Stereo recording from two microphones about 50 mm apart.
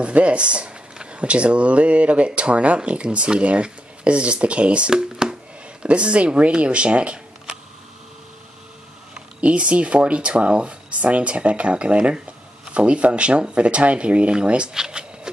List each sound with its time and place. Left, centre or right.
0.0 s speech: right
9.4 s speech: right